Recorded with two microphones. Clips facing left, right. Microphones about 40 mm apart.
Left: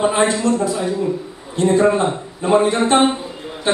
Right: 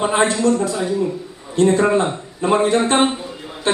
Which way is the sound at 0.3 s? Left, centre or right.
Left.